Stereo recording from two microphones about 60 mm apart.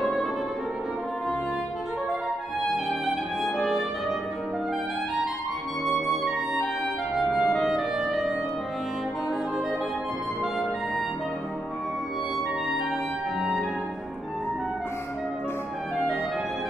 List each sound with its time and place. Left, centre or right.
0.0 s music: centre
3.4 s music: centre
5.9 s music: centre
7.2 s clarinet: centre
13.4 s music: centre